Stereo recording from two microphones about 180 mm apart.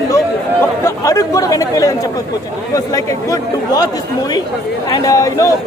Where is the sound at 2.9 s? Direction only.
20° left (ahead or behind).